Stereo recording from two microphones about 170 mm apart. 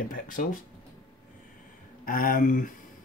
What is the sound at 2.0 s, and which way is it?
Speech, 55° left (ahead or behind).